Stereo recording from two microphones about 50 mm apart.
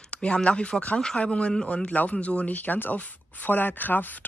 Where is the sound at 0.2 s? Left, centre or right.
Left.